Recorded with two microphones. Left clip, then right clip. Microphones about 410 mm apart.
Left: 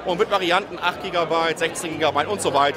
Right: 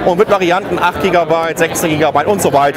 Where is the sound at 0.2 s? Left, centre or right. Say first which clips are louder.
Right 8 dB; right.